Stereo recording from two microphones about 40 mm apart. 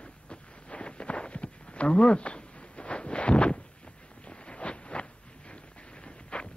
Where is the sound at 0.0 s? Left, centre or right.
Left.